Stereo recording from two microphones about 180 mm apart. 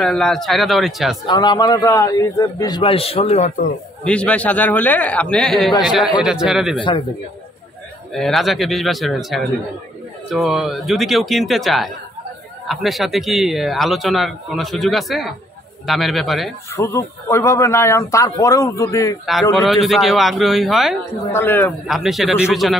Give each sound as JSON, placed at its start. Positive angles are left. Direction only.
{"t": 0.0, "sound": "a man's voice", "side_deg": 5}
{"t": 1.2, "sound": "a man's voice", "side_deg": 25}
{"t": 4.0, "sound": "a man's voice", "side_deg": 5}
{"t": 8.1, "sound": "a man's voice", "side_deg": 0}
{"t": 16.7, "sound": "speech", "side_deg": 15}
{"t": 19.5, "sound": "a man's voice", "side_deg": 0}
{"t": 21.3, "sound": "speech", "side_deg": 10}
{"t": 21.8, "sound": "a man's voice", "side_deg": 0}